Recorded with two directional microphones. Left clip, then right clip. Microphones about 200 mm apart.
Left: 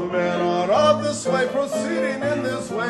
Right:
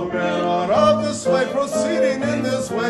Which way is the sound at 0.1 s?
25° left (ahead or behind).